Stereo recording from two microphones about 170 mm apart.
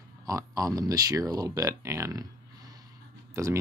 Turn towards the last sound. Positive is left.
turn(degrees=-15)  # may be behind; listen again after turning